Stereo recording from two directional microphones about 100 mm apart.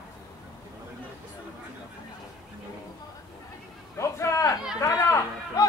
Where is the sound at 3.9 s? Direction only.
30° left (ahead or behind).